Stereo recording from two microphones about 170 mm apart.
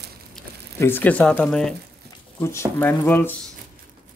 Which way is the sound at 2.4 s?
15° left (ahead or behind).